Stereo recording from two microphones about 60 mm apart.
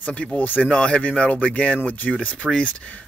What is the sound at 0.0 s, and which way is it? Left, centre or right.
Speech, left.